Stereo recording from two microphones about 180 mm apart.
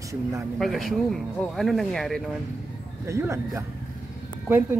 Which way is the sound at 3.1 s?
15° right (ahead or behind).